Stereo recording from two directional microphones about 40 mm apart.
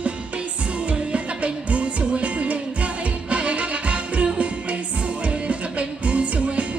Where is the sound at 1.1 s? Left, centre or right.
Right.